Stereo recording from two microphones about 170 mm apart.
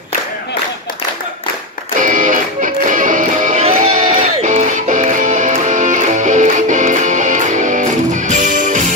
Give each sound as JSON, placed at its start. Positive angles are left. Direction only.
{"t": 2.0, "sound": "music", "side_deg": -50}